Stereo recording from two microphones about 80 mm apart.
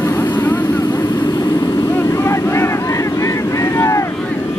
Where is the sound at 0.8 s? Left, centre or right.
Left.